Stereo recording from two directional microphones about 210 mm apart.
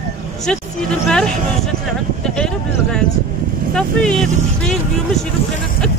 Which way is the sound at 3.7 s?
5° left (ahead or behind).